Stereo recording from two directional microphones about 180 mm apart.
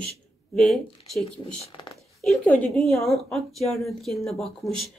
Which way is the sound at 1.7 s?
25° left (ahead or behind).